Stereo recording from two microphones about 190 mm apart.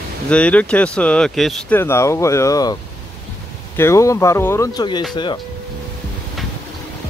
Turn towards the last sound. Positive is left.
turn(degrees=25)  # may be behind; listen again after turning